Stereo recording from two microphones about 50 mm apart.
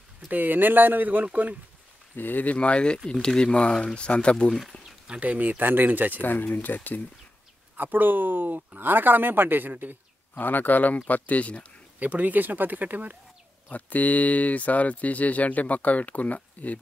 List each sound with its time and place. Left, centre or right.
0.3 s speech: right
2.1 s speech: left
2.5 s speech: left
5.0 s speech: right
6.1 s speech: left
7.7 s speech: right
10.3 s speech: left
12.0 s speech: right
13.7 s speech: left